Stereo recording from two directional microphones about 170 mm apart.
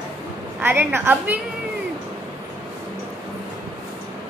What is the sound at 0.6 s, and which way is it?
Speech, 10° right (ahead or behind).